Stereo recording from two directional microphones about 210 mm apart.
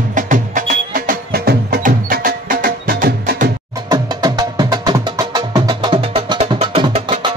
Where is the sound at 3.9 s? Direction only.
20° right (ahead or behind).